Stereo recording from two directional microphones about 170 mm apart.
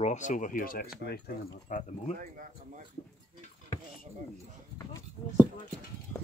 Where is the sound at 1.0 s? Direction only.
70° left (ahead or behind).